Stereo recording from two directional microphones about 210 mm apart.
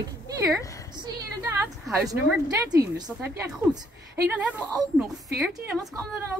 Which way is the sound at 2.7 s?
15° right (ahead or behind).